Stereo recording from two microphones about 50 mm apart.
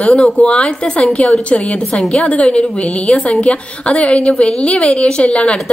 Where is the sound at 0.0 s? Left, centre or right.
Left.